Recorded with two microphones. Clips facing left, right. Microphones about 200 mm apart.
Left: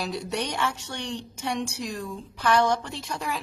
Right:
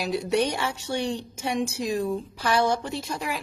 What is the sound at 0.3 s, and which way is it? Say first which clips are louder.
Speech: right 9 dB; 25° right (ahead or behind).